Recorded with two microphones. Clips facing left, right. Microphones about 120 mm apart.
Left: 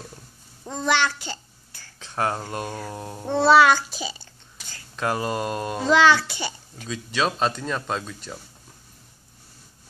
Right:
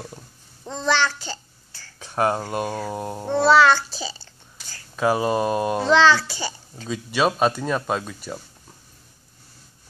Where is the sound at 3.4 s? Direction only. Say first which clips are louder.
Even; 15° left (ahead or behind).